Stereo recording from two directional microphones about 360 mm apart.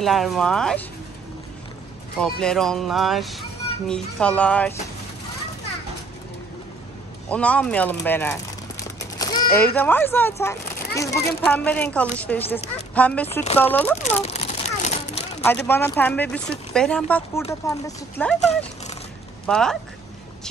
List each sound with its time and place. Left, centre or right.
0.0 s speech: centre
2.1 s speech: centre
7.2 s speech: centre
9.2 s a sound: centre
9.8 s speech: centre
14.2 s a sound: centre
15.4 s speech: centre
17.4 s speech: centre
19.4 s speech: centre